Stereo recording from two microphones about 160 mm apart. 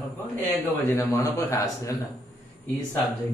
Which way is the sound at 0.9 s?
20° left (ahead or behind).